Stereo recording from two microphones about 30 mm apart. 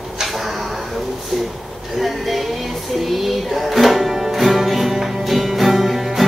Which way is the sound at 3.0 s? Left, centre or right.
Centre.